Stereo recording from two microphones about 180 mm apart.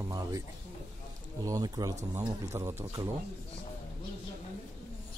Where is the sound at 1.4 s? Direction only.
20° right (ahead or behind).